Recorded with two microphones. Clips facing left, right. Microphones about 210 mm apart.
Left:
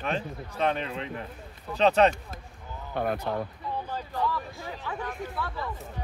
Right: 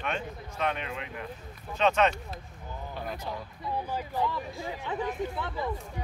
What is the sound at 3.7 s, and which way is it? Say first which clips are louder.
Speech: right 2 dB; 10° right (ahead or behind).